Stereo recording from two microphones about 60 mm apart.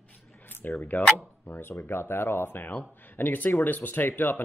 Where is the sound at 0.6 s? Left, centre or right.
Left.